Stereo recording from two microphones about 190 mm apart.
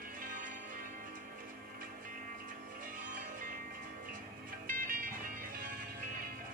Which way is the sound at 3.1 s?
45° right (ahead or behind).